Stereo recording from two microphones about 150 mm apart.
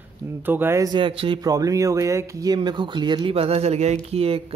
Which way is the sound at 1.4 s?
25° right (ahead or behind).